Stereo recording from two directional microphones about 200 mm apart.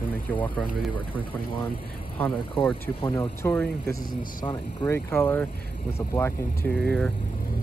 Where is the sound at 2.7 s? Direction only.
25° left (ahead or behind).